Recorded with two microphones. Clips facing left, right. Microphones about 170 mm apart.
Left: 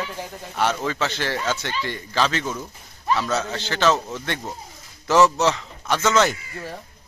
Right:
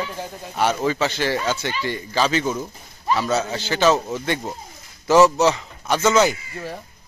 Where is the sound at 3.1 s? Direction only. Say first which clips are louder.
Right 2 dB; 5° right (ahead or behind).